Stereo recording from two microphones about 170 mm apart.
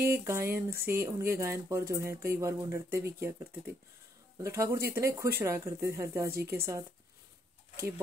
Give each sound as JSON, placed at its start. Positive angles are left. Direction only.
{"t": 0.1, "sound": "speech", "side_deg": -15}